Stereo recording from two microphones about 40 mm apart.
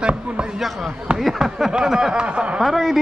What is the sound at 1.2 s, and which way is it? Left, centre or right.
Speech, centre.